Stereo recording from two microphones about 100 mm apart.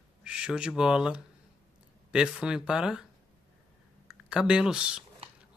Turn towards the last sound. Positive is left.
turn(degrees=-10)  # may be behind; listen again after turning